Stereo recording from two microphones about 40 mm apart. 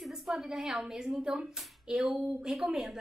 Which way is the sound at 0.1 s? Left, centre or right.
Centre.